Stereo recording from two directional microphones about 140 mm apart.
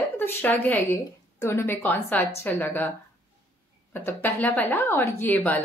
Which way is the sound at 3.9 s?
15° left (ahead or behind).